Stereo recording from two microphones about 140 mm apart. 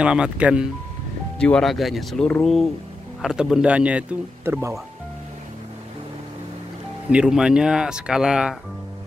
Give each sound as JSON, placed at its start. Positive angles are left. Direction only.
{"t": 0.0, "sound": "speech", "side_deg": -5}
{"t": 1.4, "sound": "speech", "side_deg": 5}
{"t": 7.1, "sound": "speech", "side_deg": -5}